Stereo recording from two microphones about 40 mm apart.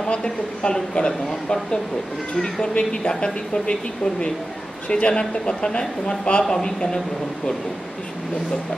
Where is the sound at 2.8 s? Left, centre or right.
Left.